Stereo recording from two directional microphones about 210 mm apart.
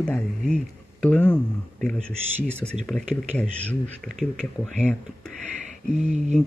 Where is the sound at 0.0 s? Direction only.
5° left (ahead or behind).